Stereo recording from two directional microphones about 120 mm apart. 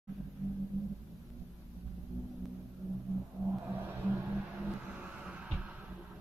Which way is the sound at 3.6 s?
20° right (ahead or behind).